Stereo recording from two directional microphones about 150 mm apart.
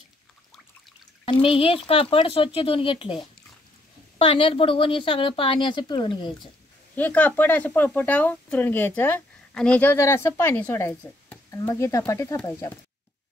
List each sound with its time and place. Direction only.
1.4 s a woman's voice: 40° left (ahead or behind)
4.2 s a woman's voice: 35° left (ahead or behind)
7.0 s speech: 10° left (ahead or behind)